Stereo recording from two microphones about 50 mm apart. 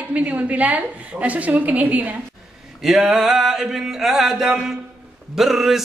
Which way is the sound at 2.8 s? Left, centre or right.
Centre.